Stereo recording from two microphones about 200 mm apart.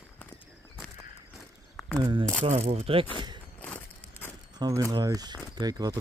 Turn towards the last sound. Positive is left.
turn(degrees=-20)  # may be behind; listen again after turning